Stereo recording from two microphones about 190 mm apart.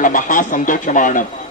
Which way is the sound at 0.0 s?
45° left (ahead or behind).